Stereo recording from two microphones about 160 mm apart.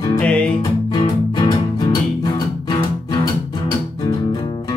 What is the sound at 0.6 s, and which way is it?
Music, 30° left (ahead or behind).